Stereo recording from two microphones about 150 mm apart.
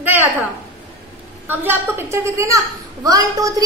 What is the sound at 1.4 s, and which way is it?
A woman's voice, 15° right (ahead or behind).